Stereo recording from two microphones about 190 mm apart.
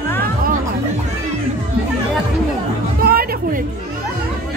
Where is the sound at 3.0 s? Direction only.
50° right (ahead or behind).